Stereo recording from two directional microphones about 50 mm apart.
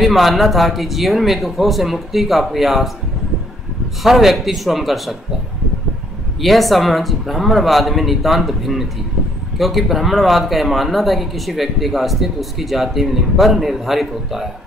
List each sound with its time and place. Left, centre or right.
0.0 s speech: centre
4.0 s speech: centre
6.4 s speech: centre